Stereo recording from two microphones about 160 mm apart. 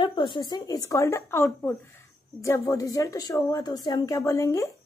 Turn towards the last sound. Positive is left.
turn(degrees=15)  # may be behind; listen again after turning